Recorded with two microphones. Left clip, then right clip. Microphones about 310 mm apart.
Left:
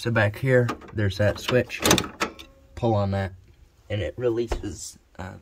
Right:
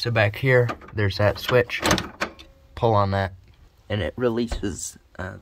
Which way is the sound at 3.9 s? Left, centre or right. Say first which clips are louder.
Right 2 dB; centre.